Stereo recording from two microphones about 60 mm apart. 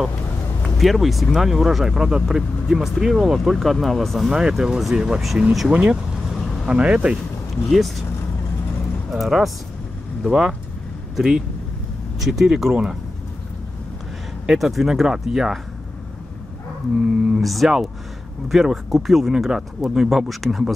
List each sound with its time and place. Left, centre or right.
0.6 s speech: centre
5.7 s speech: right
7.7 s speech: centre
9.1 s speech: centre
14.4 s speech: centre
17.0 s speech: centre
17.4 s speech: centre